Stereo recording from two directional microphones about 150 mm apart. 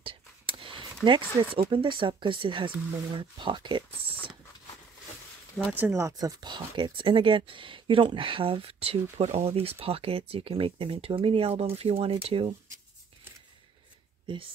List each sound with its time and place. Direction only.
0.0 s whispering: 35° right (ahead or behind)
1.0 s speech: 30° right (ahead or behind)
5.6 s speech: 10° right (ahead or behind); by 12.4 s 40° right (ahead or behind)
14.2 s speech: 35° right (ahead or behind)